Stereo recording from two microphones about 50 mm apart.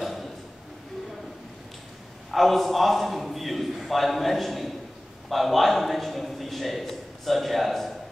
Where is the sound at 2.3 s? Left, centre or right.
Centre.